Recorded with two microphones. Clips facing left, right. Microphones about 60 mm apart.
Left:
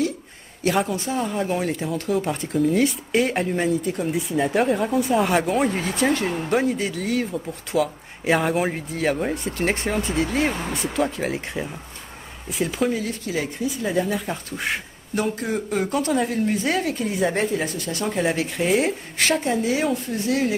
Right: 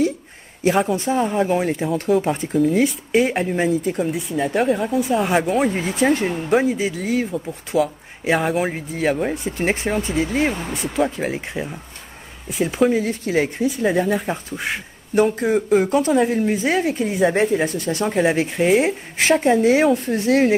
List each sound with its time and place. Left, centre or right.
0.7 s speech: centre
12.9 s a woman's voice: right
14.2 s speech: centre
19.2 s a woman's voice: right